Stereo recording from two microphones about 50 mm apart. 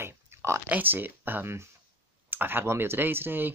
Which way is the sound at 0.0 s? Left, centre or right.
Right.